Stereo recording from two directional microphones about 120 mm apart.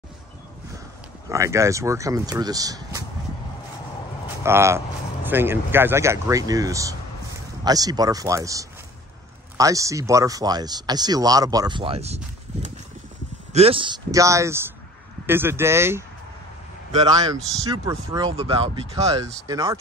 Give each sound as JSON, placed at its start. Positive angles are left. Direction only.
{"t": 1.3, "sound": "speech", "side_deg": -25}
{"t": 4.4, "sound": "speech", "side_deg": -20}
{"t": 13.5, "sound": "speech", "side_deg": -55}
{"t": 14.1, "sound": "speech", "side_deg": -25}
{"t": 17.1, "sound": "speech", "side_deg": -30}
{"t": 18.3, "sound": "speech", "side_deg": -55}
{"t": 18.9, "sound": "speech", "side_deg": -30}